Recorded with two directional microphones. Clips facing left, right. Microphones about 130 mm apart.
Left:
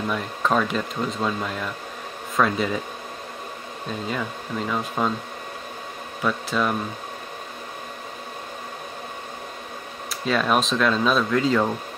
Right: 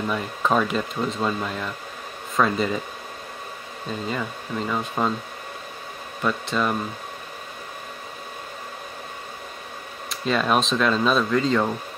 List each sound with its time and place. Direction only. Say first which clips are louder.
0.1 s speech: even; 5° right (ahead or behind)
4.1 s speech: left 1 dB; centre (ahead or behind)
6.2 s speech: even; centre (ahead or behind)
10.0 s speech: even; centre (ahead or behind)